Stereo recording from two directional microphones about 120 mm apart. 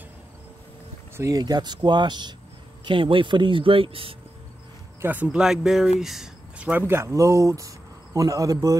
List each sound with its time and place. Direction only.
1.1 s speech: 30° right (ahead or behind); by 4.2 s 50° right (ahead or behind)
5.0 s speech: 10° right (ahead or behind)
6.9 s speech: 25° right (ahead or behind)